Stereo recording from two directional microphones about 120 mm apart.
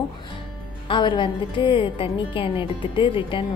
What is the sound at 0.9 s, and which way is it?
A woman's voice, 40° left (ahead or behind).